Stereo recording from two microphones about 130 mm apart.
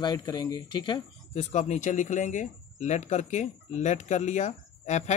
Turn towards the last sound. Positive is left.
turn(degrees=65)  # may be behind; listen again after turning